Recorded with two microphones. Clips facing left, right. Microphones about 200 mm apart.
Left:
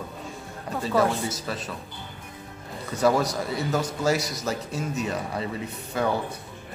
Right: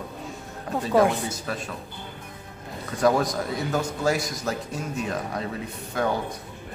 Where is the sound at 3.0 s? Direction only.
5° left (ahead or behind).